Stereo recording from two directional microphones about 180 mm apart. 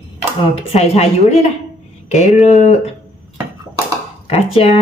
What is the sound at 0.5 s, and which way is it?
Speech, 35° left (ahead or behind).